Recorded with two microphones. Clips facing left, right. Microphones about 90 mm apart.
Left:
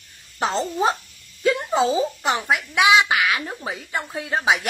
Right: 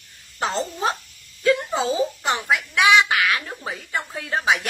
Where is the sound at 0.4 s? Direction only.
Centre (ahead or behind).